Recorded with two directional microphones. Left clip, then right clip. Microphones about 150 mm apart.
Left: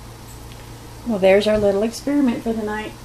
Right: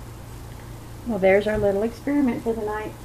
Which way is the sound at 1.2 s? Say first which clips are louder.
Left 4 dB; 70° left (ahead or behind).